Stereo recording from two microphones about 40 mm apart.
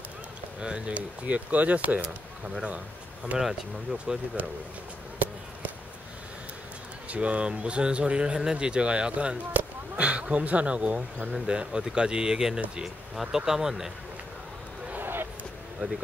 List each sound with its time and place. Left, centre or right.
0.6 s speech: right
0.9 s speech: right
4.4 s speech: right
7.1 s speech: right
9.5 s speech: right; by 13.9 s centre
15.0 s a sound: right
15.8 s speech: right